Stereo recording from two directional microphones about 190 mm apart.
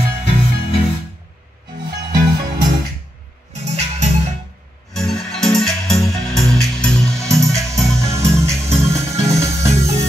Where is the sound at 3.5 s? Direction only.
35° right (ahead or behind).